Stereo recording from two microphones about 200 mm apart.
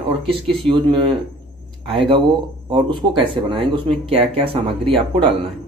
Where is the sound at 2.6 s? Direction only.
25° right (ahead or behind).